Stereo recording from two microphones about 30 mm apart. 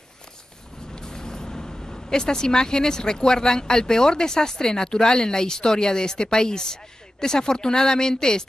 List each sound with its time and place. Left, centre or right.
0.9 s speech: left